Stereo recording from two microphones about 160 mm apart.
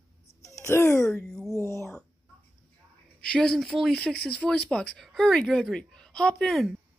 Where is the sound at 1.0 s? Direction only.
5° left (ahead or behind).